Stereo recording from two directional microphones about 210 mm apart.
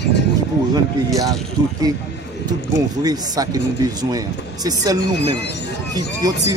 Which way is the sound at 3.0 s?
15° right (ahead or behind).